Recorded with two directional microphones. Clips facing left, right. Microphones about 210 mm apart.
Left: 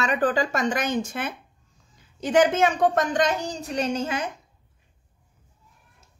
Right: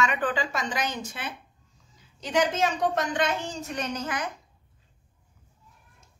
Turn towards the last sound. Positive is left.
turn(degrees=25)  # may be behind; listen again after turning